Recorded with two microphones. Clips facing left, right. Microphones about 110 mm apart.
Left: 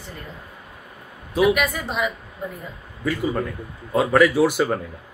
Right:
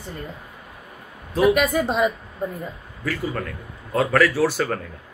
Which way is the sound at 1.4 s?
30° right (ahead or behind).